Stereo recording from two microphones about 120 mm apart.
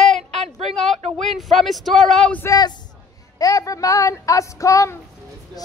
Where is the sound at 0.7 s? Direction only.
5° left (ahead or behind).